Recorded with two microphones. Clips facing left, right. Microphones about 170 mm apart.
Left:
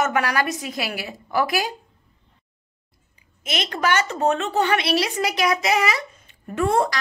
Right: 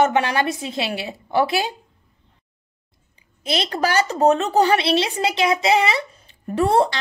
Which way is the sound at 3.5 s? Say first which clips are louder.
Right 2 dB; 30° right (ahead or behind).